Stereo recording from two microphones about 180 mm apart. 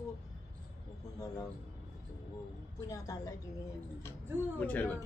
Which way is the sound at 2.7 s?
20° left (ahead or behind).